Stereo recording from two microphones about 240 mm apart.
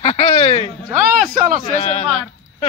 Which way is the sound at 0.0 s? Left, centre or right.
Left.